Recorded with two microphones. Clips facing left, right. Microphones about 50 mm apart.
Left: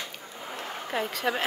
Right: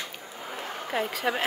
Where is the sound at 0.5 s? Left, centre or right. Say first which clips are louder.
Right 1 dB; centre.